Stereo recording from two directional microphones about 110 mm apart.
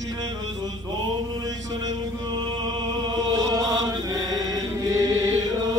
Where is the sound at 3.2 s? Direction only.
35° right (ahead or behind).